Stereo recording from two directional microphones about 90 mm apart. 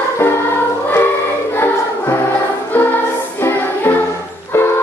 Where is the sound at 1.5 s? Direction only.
25° left (ahead or behind).